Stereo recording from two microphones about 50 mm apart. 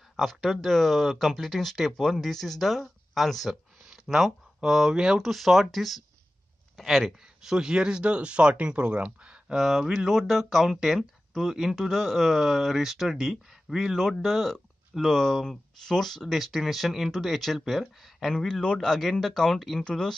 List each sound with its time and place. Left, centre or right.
0.1 s speech: centre
3.9 s speech: centre
5.2 s speech: centre
7.4 s speech: centre
13.9 s speech: centre